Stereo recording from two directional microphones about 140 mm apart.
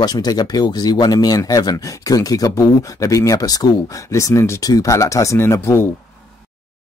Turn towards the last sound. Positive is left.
turn(degrees=20)  # may be behind; listen again after turning